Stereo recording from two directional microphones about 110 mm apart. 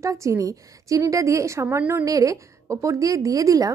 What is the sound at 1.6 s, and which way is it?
Speech, 15° right (ahead or behind).